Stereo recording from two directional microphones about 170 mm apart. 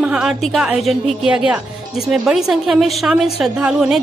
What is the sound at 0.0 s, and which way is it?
A woman's voice, 5° right (ahead or behind).